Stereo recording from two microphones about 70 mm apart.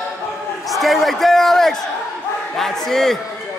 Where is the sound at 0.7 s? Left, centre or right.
Centre.